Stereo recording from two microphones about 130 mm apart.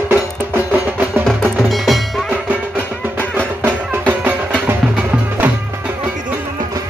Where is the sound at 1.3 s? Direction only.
Centre (ahead or behind).